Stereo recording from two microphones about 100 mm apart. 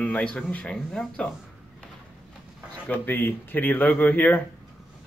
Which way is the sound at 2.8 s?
20° left (ahead or behind).